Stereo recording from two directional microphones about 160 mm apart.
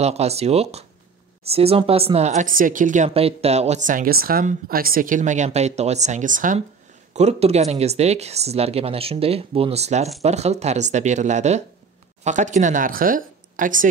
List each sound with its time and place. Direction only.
0.0 s speech: 40° right (ahead or behind)
3.2 s speech: 40° right (ahead or behind); by 6.6 s 55° right (ahead or behind)
7.2 s speech: 40° right (ahead or behind)